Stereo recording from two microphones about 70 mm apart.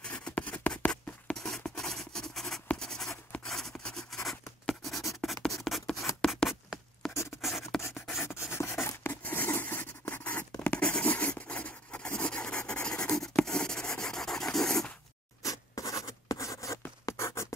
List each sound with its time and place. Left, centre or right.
0.0 s writing: centre
1.3 s writing: centre
3.4 s a sound: centre
4.3 s writing: centre
6.1 s a sound: left
7.0 s writing: centre
7.4 s a sound: centre
7.9 s writing: centre
8.4 s a sound: left
9.1 s scrape: left
10.8 s writing: centre
15.4 s zipper: left
17.0 s scratch: left